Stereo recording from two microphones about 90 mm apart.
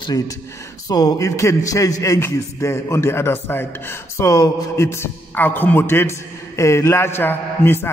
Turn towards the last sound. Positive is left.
turn(degrees=25)  # may be behind; listen again after turning